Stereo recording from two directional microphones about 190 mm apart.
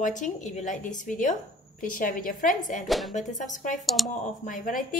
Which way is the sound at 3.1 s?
40° left (ahead or behind).